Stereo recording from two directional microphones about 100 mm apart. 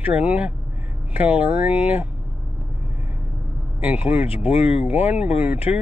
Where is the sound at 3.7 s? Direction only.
15° right (ahead or behind).